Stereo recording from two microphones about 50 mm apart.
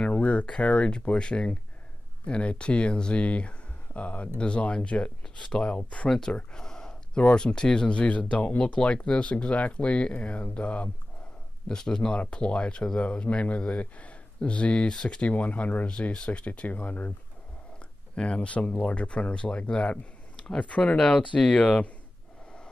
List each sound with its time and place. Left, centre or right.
0.2 s speech: left
6.0 s speech: centre
6.3 s a sound: centre
7.2 s speech: left
15.9 s speech: centre; by 17.1 s left
18.1 s speech: left